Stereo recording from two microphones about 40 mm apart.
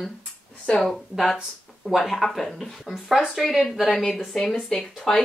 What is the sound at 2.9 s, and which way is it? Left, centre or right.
Speech, centre.